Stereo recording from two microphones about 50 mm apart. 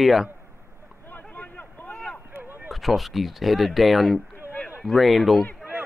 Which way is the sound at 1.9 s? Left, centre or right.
Left.